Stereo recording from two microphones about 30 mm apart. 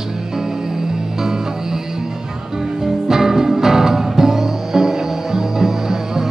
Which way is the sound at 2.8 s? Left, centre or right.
Centre.